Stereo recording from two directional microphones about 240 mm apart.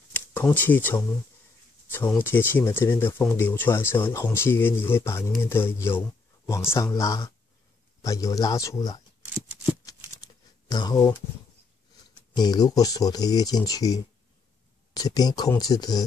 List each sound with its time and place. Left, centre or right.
0.1 s speech: centre
10.2 s a sound: centre
12.4 s speech: centre